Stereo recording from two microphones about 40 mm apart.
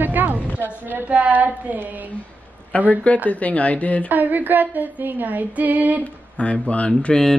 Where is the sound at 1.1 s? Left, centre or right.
Right.